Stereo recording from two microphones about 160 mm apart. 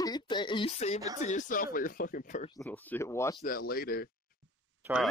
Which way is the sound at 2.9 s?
15° left (ahead or behind).